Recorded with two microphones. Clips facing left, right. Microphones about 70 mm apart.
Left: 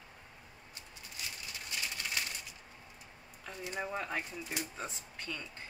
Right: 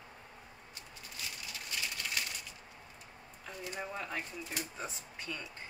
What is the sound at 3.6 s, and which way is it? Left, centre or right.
Speech, centre.